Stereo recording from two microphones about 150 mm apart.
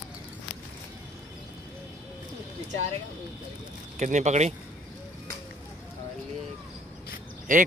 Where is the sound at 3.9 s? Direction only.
50° right (ahead or behind).